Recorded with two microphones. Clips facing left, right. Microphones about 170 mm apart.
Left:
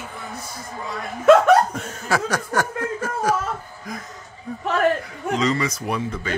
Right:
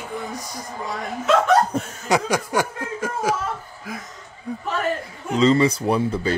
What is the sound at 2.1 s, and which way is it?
Snicker, 15° right (ahead or behind).